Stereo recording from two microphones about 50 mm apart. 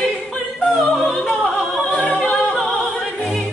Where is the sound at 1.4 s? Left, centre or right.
Left.